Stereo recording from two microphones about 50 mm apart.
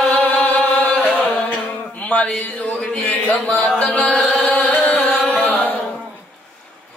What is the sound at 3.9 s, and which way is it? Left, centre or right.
Music, left.